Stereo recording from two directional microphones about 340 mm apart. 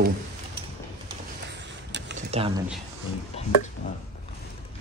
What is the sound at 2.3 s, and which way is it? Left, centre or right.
Speech, centre.